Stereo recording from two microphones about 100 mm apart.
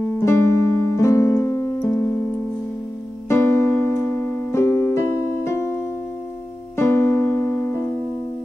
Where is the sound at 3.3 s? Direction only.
25° left (ahead or behind).